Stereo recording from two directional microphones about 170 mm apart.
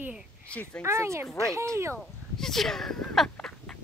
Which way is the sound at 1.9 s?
Centre (ahead or behind).